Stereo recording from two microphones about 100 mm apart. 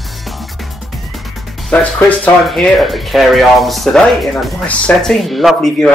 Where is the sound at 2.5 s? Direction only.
Centre (ahead or behind).